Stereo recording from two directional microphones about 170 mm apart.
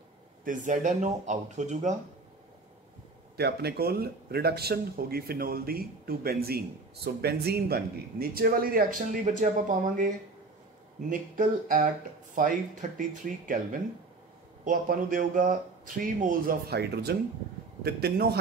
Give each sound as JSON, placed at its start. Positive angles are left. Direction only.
{"t": 0.5, "sound": "speech", "side_deg": -50}
{"t": 3.3, "sound": "speech", "side_deg": -70}
{"t": 14.6, "sound": "a man's voice", "side_deg": -55}